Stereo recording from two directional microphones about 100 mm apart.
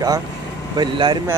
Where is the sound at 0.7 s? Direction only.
50° right (ahead or behind).